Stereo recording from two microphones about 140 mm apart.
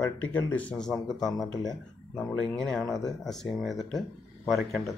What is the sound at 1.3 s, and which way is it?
Speech, 25° left (ahead or behind).